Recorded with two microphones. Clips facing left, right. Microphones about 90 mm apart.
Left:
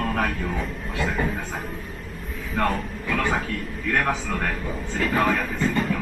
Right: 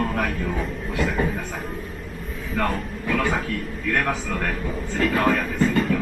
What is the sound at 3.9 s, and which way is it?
A man's voice, 15° left (ahead or behind).